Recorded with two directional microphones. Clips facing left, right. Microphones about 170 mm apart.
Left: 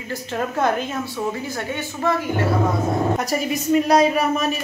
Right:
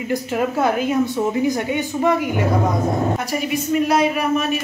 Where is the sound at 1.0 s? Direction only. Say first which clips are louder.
Right 7 dB; 20° right (ahead or behind).